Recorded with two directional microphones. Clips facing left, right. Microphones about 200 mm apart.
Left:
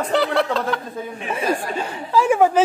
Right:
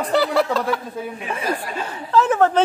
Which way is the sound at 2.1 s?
10° left (ahead or behind).